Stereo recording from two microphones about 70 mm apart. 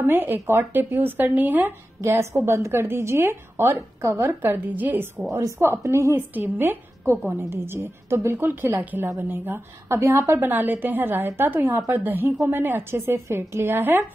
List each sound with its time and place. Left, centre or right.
0.0 s a woman's voice: right
2.0 s a woman's voice: right
5.3 s a woman's voice: right
6.1 s a woman's voice: right
9.8 s a woman's voice: right
10.4 s a woman's voice: right